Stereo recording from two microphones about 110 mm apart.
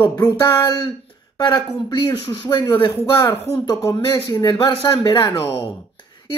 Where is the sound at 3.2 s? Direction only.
30° left (ahead or behind).